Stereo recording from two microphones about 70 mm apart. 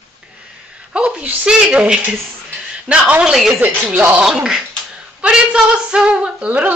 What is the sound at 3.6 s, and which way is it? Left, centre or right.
Speech, right.